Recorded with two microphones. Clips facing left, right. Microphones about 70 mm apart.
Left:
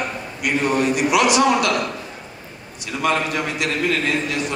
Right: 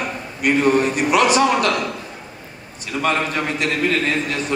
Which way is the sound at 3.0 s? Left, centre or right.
Right.